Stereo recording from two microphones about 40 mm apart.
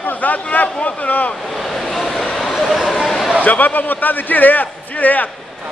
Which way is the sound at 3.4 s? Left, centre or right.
Left.